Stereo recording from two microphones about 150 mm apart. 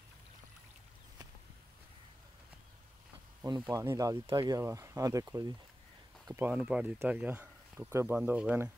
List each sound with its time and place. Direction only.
3.4 s speech: 25° right (ahead or behind)
6.2 s speech: 15° right (ahead or behind)